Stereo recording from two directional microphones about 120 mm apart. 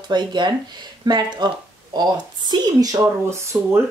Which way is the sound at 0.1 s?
40° right (ahead or behind).